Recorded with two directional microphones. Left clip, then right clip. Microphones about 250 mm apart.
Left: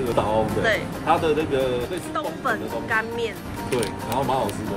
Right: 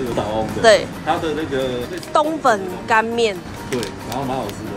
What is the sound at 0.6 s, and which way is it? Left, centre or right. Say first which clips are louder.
Speech: right 10 dB; centre.